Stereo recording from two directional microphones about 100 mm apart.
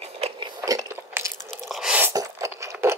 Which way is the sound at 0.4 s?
40° right (ahead or behind).